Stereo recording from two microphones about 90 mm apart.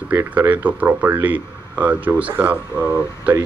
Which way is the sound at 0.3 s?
15° right (ahead or behind).